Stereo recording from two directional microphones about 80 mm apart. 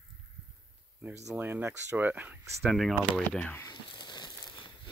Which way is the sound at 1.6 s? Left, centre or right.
Right.